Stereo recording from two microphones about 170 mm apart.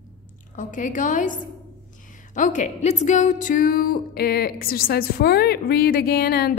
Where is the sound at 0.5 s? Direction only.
50° left (ahead or behind).